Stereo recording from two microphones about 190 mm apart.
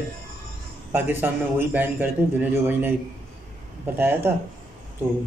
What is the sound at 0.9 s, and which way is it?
A man's voice, 10° right (ahead or behind).